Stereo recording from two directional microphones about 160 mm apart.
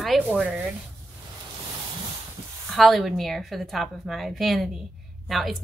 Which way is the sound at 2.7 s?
Centre (ahead or behind).